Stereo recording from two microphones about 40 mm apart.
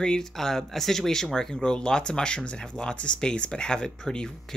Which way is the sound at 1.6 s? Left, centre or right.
Centre.